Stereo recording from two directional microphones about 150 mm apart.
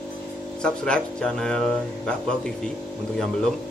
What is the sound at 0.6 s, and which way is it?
Speech, 5° left (ahead or behind).